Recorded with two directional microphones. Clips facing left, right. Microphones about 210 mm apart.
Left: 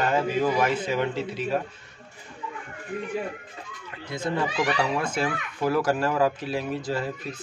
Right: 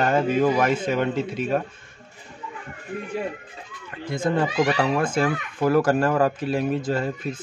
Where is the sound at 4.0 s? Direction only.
50° right (ahead or behind).